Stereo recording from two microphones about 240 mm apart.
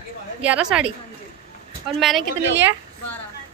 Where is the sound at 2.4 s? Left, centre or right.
Right.